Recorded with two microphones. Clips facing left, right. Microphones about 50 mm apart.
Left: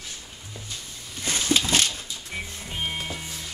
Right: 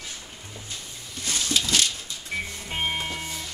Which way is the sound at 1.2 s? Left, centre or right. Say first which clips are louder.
Left 3 dB; left.